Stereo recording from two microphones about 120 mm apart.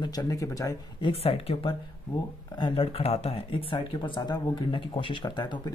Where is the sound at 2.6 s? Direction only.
40° left (ahead or behind).